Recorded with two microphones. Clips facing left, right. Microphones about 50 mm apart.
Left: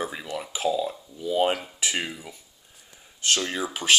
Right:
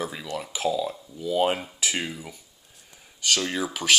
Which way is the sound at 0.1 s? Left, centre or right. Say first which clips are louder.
Even; centre.